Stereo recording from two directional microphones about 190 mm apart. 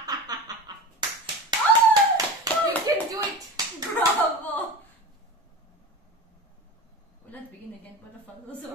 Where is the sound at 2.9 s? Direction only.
20° right (ahead or behind).